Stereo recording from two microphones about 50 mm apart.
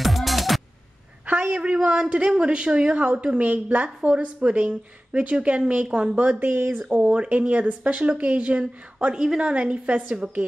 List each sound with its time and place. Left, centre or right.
0.0 s music: centre
1.2 s a sound: right
1.5 s speech: right
2.9 s speech: right
6.2 s speech: right
6.9 s a woman's voice: right